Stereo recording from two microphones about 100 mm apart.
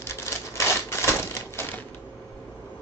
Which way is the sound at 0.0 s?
25° left (ahead or behind).